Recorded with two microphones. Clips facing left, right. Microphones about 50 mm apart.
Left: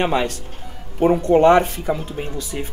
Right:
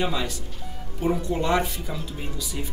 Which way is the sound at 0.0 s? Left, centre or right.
Left.